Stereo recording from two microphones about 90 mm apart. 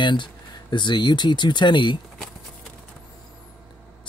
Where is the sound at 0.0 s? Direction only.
60° left (ahead or behind).